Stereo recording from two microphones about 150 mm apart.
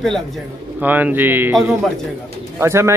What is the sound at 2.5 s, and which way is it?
Speech, 20° right (ahead or behind).